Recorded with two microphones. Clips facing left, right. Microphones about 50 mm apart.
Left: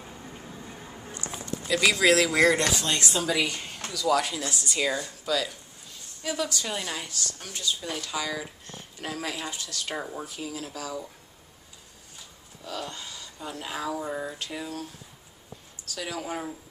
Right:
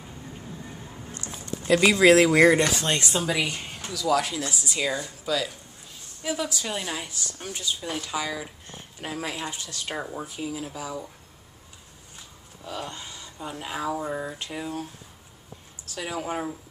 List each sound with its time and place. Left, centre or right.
0.0 s a sound: centre
1.8 s speech: right
3.2 s speech: centre
9.9 s speech: centre
10.2 s speech: centre
12.6 s speech: right
14.5 s speech: right